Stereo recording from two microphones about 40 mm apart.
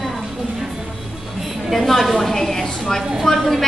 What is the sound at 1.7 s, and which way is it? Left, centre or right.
A woman's voice, centre.